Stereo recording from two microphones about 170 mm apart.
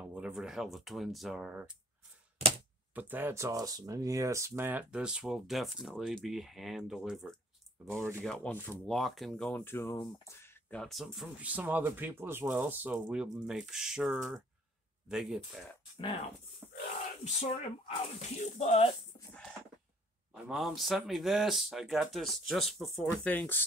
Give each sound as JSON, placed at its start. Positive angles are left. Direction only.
{"t": 0.0, "sound": "speech", "side_deg": -5}
{"t": 2.9, "sound": "speech", "side_deg": -10}
{"t": 8.9, "sound": "speech", "side_deg": 0}
{"t": 9.9, "sound": "speech", "side_deg": 25}
{"t": 10.4, "sound": "speech", "side_deg": 10}
{"t": 16.6, "sound": "a sound", "side_deg": -10}
{"t": 17.2, "sound": "speech", "side_deg": 40}
{"t": 20.3, "sound": "speech", "side_deg": 0}